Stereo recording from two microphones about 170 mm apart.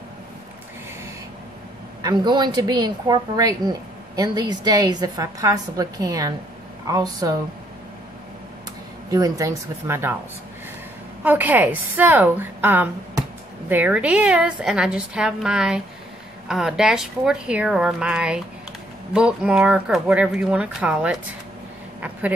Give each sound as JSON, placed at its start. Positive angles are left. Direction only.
{"t": 2.0, "sound": "a woman's voice", "side_deg": -25}
{"t": 9.1, "sound": "a woman's voice", "side_deg": -20}
{"t": 11.2, "sound": "a woman's voice", "side_deg": -10}